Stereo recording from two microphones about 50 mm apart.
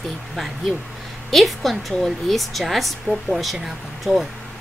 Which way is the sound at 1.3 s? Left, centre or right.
Centre.